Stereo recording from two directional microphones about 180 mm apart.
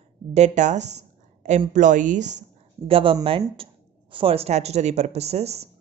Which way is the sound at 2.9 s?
30° right (ahead or behind).